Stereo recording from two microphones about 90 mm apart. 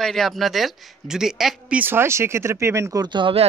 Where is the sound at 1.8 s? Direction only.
25° right (ahead or behind).